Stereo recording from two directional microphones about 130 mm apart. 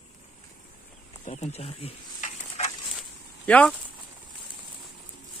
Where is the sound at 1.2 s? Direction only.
60° left (ahead or behind).